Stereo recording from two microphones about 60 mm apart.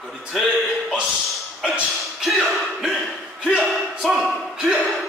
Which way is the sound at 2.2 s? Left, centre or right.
Centre.